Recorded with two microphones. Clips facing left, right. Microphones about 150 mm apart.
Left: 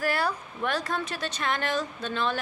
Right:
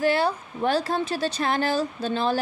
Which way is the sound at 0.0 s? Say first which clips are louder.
Right 6 dB; 25° right (ahead or behind).